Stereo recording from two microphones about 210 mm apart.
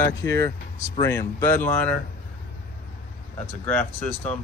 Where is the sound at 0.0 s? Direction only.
15° left (ahead or behind).